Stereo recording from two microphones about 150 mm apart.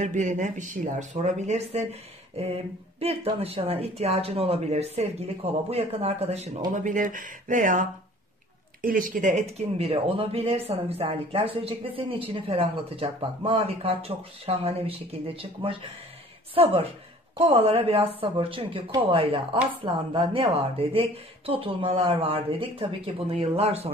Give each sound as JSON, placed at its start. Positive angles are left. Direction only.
{"t": 0.0, "sound": "speech", "side_deg": -55}
{"t": 6.7, "sound": "speech", "side_deg": -60}
{"t": 8.8, "sound": "speech", "side_deg": -65}